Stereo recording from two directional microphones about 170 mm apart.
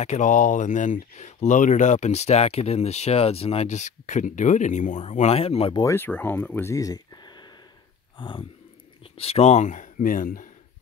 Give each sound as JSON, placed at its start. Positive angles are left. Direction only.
{"t": 0.0, "sound": "speech", "side_deg": 45}
{"t": 5.9, "sound": "speech", "side_deg": 10}
{"t": 8.2, "sound": "a sound", "side_deg": 30}
{"t": 9.0, "sound": "speech", "side_deg": 35}